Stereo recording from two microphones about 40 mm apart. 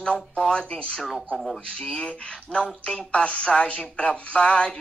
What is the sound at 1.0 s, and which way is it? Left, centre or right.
Speech, centre.